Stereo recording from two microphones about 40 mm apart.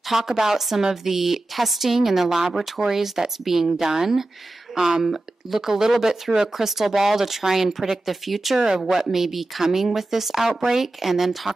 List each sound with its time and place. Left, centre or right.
0.3 s speech: centre
8.5 s speech: centre